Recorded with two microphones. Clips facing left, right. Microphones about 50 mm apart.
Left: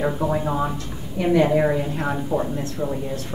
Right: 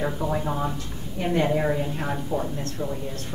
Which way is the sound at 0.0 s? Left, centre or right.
Centre.